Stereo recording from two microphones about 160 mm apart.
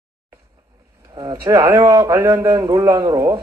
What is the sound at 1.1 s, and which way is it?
Speech, 25° right (ahead or behind).